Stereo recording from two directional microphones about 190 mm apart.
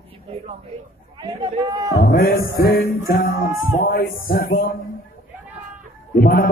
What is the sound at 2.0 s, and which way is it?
A man's voice, 50° left (ahead or behind).